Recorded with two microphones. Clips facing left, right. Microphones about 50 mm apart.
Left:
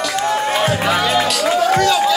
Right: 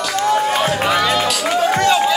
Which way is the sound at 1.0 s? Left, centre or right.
Centre.